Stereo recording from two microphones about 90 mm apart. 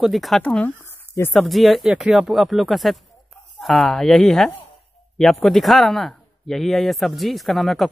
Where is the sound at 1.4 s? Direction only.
Centre (ahead or behind).